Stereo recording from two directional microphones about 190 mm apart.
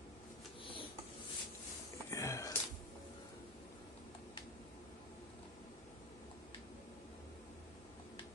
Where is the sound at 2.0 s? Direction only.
15° left (ahead or behind).